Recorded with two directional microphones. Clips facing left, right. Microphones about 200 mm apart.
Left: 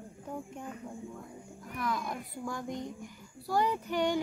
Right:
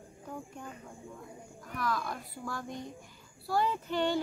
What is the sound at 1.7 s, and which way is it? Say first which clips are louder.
Speech: even; 20° left (ahead or behind).